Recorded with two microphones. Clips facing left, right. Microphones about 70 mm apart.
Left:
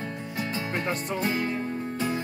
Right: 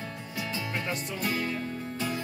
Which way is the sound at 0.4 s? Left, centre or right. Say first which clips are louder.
Left 3 dB; left.